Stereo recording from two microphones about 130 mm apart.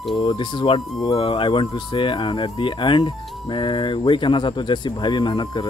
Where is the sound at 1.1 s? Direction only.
45° left (ahead or behind).